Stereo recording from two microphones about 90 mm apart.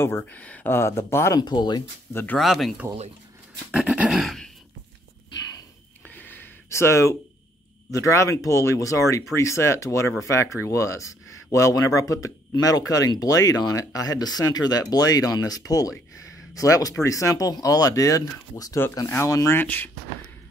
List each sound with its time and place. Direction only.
0.0 s speech: 25° left (ahead or behind)
0.7 s speech: 30° left (ahead or behind)
1.4 s speech: 50° left (ahead or behind)
2.3 s speech: centre (ahead or behind)
3.7 s dog: 15° right (ahead or behind)
4.2 s a sound: centre (ahead or behind)
6.0 s a sound: 20° left (ahead or behind)
7.9 s speech: 35° left (ahead or behind)
19.5 s speech: 20° left (ahead or behind)